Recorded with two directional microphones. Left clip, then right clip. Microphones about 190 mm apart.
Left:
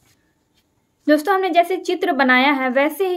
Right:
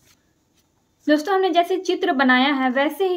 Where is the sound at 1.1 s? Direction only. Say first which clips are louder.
Left 2 dB; 30° left (ahead or behind).